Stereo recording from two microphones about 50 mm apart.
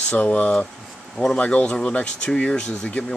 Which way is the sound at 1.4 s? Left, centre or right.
Left.